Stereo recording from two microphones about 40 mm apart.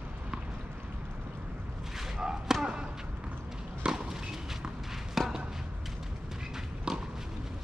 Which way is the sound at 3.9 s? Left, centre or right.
Centre.